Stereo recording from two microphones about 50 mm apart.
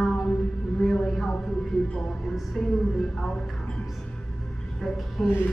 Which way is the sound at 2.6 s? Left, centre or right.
Centre.